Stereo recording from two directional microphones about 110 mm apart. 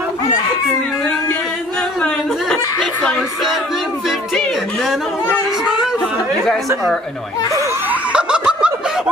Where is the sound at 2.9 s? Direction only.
15° left (ahead or behind).